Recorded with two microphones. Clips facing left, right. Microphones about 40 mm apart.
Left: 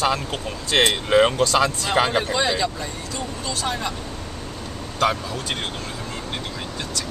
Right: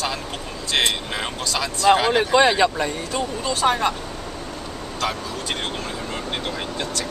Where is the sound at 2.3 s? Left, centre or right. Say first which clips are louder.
Right 6 dB; right.